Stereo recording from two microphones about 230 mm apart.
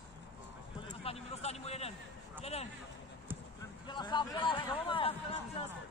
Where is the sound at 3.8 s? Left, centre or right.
Centre.